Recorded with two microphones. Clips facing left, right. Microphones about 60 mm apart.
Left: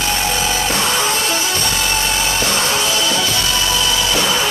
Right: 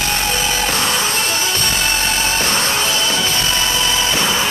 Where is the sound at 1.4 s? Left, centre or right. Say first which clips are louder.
Even; right.